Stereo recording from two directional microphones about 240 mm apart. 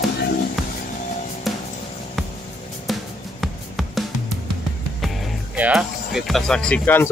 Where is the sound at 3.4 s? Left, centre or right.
Centre.